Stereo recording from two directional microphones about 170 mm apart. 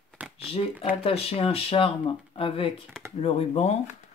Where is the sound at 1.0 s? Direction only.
35° left (ahead or behind).